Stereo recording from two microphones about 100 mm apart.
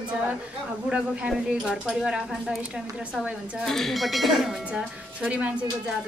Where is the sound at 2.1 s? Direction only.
10° right (ahead or behind).